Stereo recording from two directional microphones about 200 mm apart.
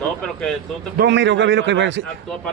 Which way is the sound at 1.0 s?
60° right (ahead or behind).